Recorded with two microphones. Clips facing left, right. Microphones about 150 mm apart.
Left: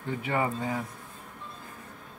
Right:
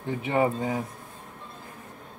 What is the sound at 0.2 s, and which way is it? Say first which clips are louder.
Speech: right 5 dB; 20° right (ahead or behind).